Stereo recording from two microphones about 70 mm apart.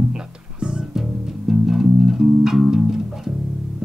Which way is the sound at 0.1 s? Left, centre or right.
Centre.